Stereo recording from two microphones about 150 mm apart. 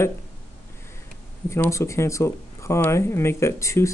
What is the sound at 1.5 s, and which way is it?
Speech, 20° left (ahead or behind).